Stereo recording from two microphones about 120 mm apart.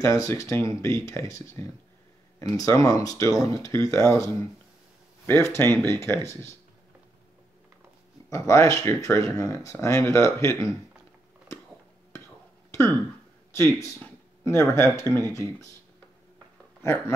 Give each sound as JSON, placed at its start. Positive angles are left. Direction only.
{"t": 0.0, "sound": "speech", "side_deg": 25}
{"t": 8.3, "sound": "speech", "side_deg": 25}
{"t": 12.7, "sound": "throat clearing", "side_deg": 20}
{"t": 13.7, "sound": "speech", "side_deg": 25}
{"t": 15.0, "sound": "speech", "side_deg": -30}